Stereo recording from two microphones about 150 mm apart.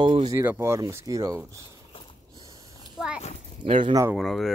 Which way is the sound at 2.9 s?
5° right (ahead or behind).